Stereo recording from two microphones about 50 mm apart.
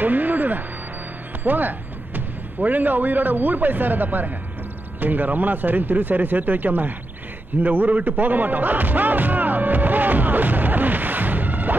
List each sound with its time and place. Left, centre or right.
0.0 s music: right
1.4 s speech: right
7.6 s music: right